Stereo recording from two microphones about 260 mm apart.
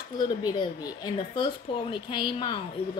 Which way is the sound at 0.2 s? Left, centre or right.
Centre.